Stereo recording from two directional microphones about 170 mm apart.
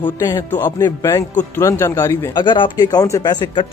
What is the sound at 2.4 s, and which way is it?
Speech, 25° left (ahead or behind).